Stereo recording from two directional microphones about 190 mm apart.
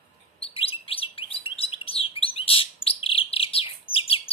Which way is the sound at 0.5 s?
30° left (ahead or behind).